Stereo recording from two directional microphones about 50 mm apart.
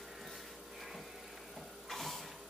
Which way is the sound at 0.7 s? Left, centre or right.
Centre.